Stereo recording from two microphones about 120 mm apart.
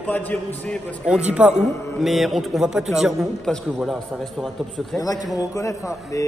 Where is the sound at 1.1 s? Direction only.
10° right (ahead or behind).